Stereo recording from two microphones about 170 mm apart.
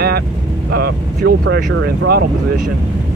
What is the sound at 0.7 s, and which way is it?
Speech, 70° right (ahead or behind).